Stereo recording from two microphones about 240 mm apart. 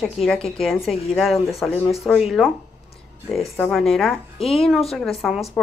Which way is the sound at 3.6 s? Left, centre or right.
Centre.